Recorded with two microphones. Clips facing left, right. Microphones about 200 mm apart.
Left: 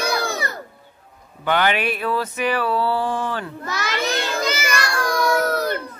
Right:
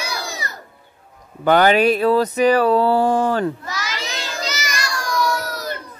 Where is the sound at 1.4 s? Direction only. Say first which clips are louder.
Right 7 dB; 40° right (ahead or behind).